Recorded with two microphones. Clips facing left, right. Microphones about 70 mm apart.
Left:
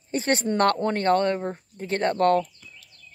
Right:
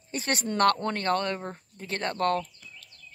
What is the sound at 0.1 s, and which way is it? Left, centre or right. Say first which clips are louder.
Speech: left 6 dB; left.